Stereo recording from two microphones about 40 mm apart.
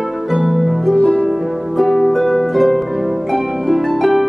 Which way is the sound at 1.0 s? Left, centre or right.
Left.